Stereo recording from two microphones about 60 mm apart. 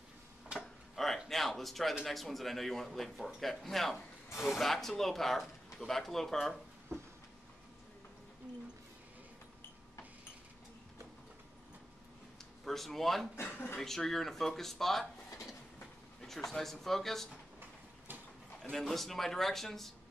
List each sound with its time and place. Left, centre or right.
0.5 s tick-tock: centre
0.9 s a sound: centre
2.0 s speech: centre
12.6 s speech: centre
16.4 s speech: centre
17.6 s train: right
18.6 s speech: centre